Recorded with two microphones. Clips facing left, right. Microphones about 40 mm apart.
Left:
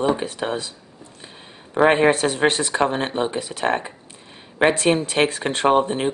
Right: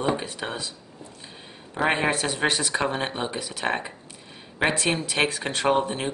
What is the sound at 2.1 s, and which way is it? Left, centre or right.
Speech, left.